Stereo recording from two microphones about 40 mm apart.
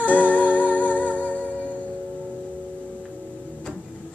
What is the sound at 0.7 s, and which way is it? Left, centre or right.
Music, left.